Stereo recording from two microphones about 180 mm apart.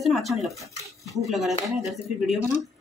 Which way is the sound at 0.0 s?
Centre (ahead or behind).